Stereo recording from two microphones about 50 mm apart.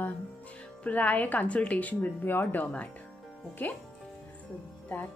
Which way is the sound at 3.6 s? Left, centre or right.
Left.